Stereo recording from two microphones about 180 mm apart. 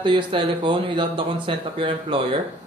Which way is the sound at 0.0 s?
25° right (ahead or behind).